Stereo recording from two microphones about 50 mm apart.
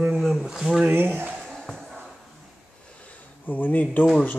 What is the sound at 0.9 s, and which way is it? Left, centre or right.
Speech, right.